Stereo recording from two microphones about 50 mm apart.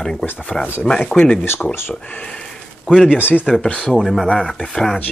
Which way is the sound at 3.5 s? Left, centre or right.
Left.